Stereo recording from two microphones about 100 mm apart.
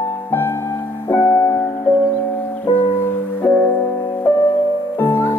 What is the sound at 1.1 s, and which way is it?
Piano, 30° left (ahead or behind).